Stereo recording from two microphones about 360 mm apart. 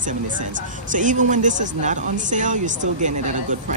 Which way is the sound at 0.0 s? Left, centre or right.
Right.